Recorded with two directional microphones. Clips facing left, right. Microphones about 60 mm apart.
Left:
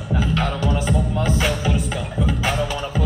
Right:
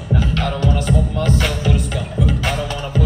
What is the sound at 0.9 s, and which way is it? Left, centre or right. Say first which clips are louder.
Music: right 2 dB; centre.